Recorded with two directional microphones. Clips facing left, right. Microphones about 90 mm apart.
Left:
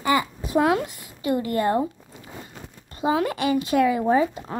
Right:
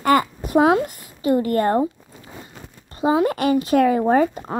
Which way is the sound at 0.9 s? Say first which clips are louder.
Right 5 dB; 35° right (ahead or behind).